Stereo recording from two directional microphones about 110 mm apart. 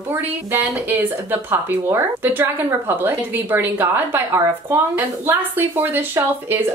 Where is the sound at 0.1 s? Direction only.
20° right (ahead or behind).